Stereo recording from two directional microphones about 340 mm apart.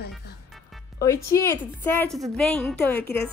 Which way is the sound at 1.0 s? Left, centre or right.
Centre.